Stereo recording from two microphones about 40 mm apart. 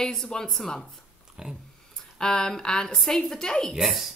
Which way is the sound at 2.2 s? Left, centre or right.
Centre.